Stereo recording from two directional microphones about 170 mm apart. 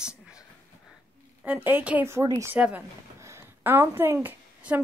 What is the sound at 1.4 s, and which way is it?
A woman's voice, 10° right (ahead or behind).